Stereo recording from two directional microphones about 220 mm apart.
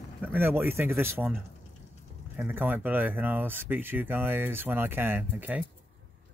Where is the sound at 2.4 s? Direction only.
10° right (ahead or behind).